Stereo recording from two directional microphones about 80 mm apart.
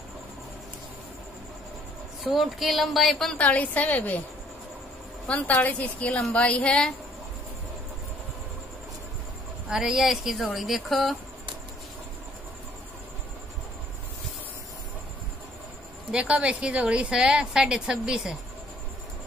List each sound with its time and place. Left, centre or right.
2.2 s a woman's voice: centre
3.3 s a woman's voice: centre
5.2 s speech: centre
9.7 s a woman's voice: centre
16.1 s a woman's voice: centre